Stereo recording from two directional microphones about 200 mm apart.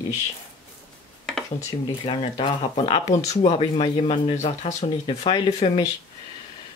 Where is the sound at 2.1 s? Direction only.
25° left (ahead or behind).